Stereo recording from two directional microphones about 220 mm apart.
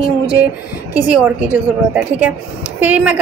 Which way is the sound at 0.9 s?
5° right (ahead or behind).